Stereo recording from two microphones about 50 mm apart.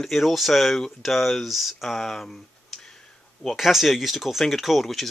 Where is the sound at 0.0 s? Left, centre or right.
Centre.